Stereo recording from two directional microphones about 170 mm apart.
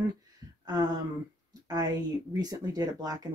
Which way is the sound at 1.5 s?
25° right (ahead or behind).